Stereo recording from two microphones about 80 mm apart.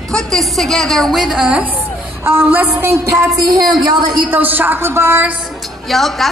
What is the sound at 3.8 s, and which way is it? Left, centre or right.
Speech, right.